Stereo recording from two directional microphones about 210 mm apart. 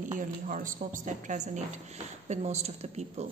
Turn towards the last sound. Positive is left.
turn(degrees=-30)  # may be behind; listen again after turning